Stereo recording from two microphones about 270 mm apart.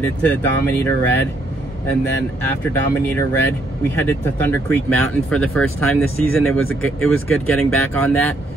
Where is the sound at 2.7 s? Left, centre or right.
Centre.